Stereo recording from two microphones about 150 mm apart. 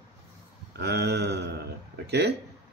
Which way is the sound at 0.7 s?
90° right.